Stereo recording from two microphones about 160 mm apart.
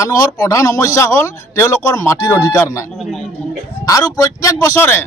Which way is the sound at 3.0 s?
Centre (ahead or behind).